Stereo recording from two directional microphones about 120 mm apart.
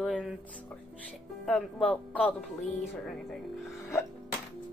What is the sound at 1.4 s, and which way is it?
Speech, 10° left (ahead or behind).